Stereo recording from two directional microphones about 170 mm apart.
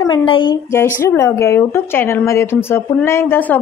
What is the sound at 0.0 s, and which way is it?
Speech, 30° left (ahead or behind).